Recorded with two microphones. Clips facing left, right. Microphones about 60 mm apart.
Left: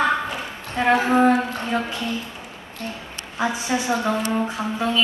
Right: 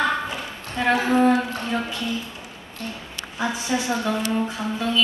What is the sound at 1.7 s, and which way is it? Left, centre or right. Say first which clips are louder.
Speech: left 2 dB; centre.